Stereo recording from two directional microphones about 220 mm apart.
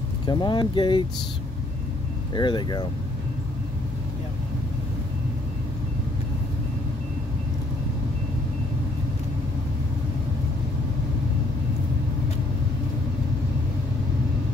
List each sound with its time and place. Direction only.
0.3 s speech: 20° left (ahead or behind)
2.3 s speech: 20° left (ahead or behind)